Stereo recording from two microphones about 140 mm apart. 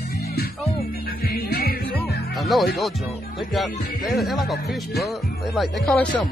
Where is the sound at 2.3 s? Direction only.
Centre (ahead or behind).